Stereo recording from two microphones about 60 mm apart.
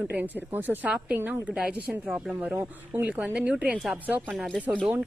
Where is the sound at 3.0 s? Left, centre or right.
Right.